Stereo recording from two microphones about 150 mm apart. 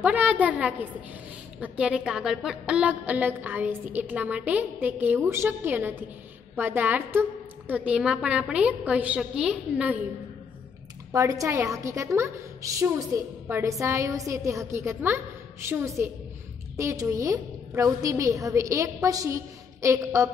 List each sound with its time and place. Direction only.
0.0 s a woman's voice: 10° right (ahead or behind)
11.1 s a woman's voice: 20° right (ahead or behind)